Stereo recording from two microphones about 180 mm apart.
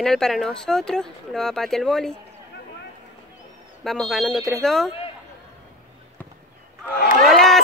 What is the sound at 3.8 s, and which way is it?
Speech, centre (ahead or behind).